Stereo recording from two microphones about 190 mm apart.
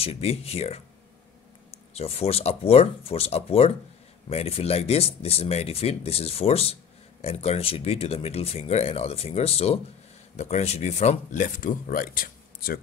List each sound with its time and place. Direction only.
0.0 s speech: 35° left (ahead or behind); by 12.8 s 50° left (ahead or behind)